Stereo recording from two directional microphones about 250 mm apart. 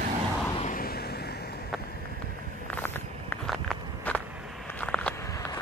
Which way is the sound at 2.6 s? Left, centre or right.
Centre.